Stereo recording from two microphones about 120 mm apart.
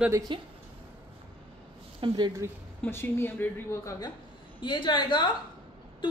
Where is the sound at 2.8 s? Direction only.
20° left (ahead or behind).